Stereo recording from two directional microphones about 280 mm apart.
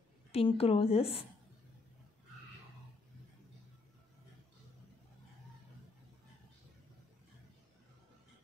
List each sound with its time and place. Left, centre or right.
0.3 s a woman's voice: left